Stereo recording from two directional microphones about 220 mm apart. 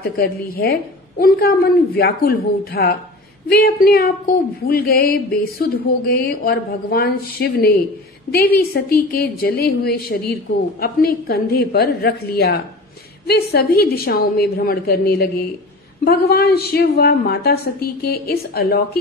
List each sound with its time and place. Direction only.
0.2 s speech: 45° left (ahead or behind)